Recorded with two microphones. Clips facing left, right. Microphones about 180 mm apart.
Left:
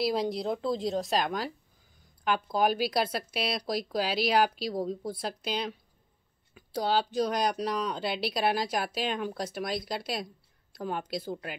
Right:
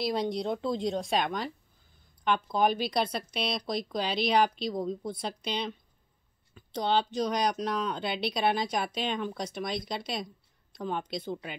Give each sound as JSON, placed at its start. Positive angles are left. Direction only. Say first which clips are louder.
{"t": 0.0, "sound": "speech", "louder": "left 1 dB", "side_deg": 5}
{"t": 2.5, "sound": "speech", "louder": "left 1 dB", "side_deg": 5}